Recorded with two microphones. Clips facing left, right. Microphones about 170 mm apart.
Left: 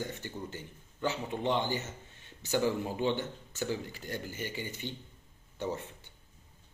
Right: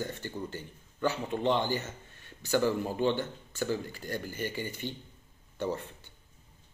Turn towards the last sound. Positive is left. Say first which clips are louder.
# right 3 dB
turn(degrees=15)  # may be behind; listen again after turning